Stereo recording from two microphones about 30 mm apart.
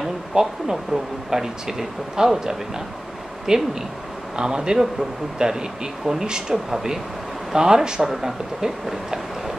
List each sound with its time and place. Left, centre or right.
0.3 s speech: right
1.3 s speech: centre